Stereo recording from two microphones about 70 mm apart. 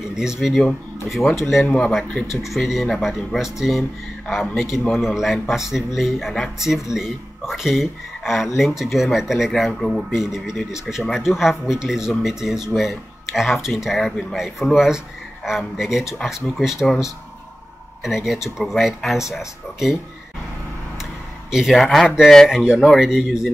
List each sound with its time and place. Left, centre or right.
0.1 s speech: centre
1.6 s speech: centre
2.4 s speech: centre
9.7 s speech: centre
18.0 s speech: centre
21.0 s a sound: centre
21.7 s speech: centre
22.0 s speech: centre